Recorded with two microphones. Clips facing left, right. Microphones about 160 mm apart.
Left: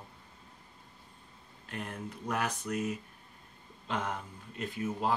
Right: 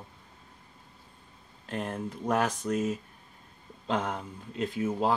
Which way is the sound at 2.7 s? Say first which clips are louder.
Right 6 dB; 40° right (ahead or behind).